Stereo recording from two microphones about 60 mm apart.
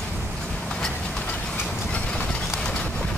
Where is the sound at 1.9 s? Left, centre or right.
Left.